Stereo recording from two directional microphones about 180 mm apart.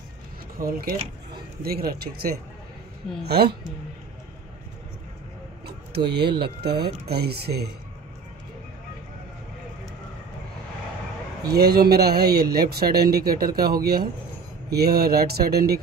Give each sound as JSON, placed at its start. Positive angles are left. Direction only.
{"t": 0.6, "sound": "speech", "side_deg": -55}
{"t": 5.7, "sound": "music", "side_deg": -65}
{"t": 6.4, "sound": "speech", "side_deg": -65}
{"t": 11.5, "sound": "speech", "side_deg": -60}